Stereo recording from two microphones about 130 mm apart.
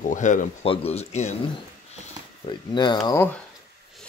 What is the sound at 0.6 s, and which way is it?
Speech, 50° left (ahead or behind).